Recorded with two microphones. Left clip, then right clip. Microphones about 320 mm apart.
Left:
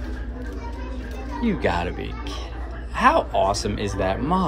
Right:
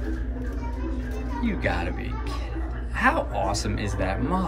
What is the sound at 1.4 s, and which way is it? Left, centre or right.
Speech, centre.